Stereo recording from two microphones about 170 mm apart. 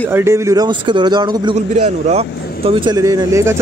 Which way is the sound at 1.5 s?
40° right (ahead or behind).